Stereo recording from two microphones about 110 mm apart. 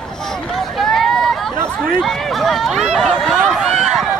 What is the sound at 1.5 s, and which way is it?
Speech, 25° right (ahead or behind).